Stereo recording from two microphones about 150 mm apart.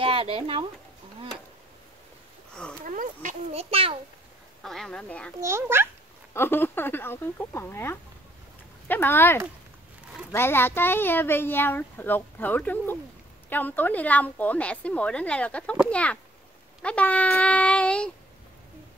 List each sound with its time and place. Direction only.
0.0 s speech: 35° right (ahead or behind)
2.5 s a sound: 5° left (ahead or behind)
2.8 s a sound: 60° right (ahead or behind)
3.5 s a child's voice: 40° right (ahead or behind)
4.6 s speech: 5° left (ahead or behind)
5.4 s a child's voice: 15° right (ahead or behind)
6.3 s speech: 15° left (ahead or behind)